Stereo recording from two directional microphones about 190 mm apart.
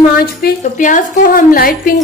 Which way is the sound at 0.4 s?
45° left (ahead or behind).